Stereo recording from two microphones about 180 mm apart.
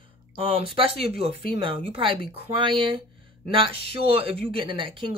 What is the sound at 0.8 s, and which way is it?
Speech, 30° right (ahead or behind).